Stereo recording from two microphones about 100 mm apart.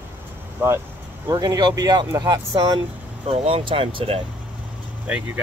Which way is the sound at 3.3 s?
70° right (ahead or behind).